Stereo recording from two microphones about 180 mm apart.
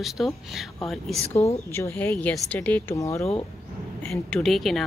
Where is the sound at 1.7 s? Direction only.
15° left (ahead or behind).